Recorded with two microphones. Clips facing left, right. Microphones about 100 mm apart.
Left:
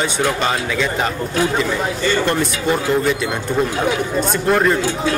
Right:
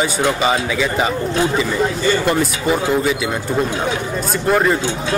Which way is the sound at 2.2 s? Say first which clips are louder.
Right 1 dB; centre (ahead or behind).